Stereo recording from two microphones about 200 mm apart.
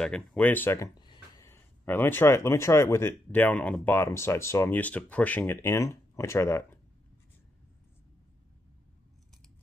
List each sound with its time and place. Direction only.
0.0 s speech: 5° left (ahead or behind)
1.0 s a sound: 20° left (ahead or behind)
1.5 s speech: 10° left (ahead or behind)